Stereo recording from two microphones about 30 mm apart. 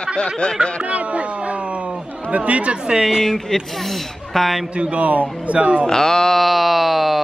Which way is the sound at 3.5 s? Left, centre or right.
Centre.